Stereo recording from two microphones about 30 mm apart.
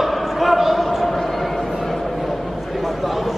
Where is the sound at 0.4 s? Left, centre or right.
Centre.